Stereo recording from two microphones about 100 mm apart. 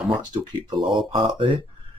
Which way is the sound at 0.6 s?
55° right (ahead or behind).